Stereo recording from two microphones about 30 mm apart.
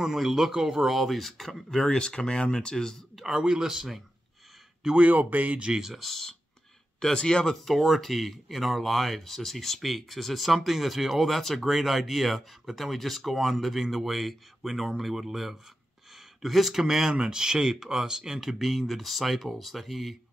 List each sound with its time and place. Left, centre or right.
0.2 s speech: centre
1.9 s speech: left
3.2 s speech: centre
4.9 s speech: right
5.9 s speech: centre
7.2 s speech: left
7.6 s speech: centre
11.2 s speech: centre
11.6 s speech: centre
16.8 s speech: centre
17.1 s speech: right
17.4 s speech: right
18.6 s speech: centre